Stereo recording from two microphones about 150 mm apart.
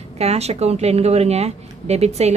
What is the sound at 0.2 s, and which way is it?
Speech, 45° right (ahead or behind).